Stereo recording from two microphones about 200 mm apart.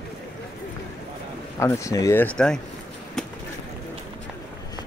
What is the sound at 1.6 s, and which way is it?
Speech, 15° left (ahead or behind).